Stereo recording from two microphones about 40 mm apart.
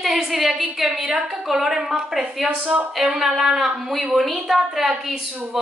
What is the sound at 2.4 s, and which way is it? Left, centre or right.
Speech, right.